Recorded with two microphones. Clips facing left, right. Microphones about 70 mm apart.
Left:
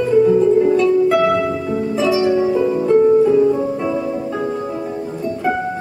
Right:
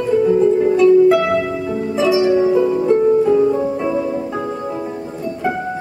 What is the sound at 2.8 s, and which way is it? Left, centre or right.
Music, centre.